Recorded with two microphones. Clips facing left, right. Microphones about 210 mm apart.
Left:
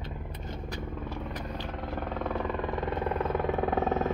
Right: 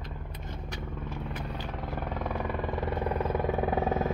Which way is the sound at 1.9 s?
5° right (ahead or behind).